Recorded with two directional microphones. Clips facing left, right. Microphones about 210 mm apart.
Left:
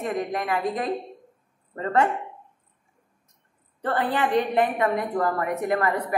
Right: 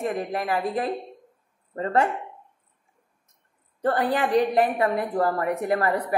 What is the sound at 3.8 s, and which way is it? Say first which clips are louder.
A woman's voice: right 2 dB; 40° right (ahead or behind).